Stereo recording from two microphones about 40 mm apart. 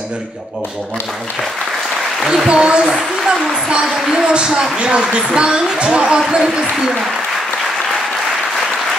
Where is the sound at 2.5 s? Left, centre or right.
Right.